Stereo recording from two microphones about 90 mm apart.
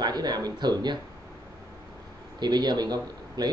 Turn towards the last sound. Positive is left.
turn(degrees=-50)  # may be behind; listen again after turning